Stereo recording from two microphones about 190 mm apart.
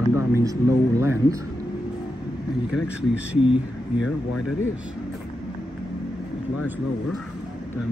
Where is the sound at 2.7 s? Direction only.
5° right (ahead or behind).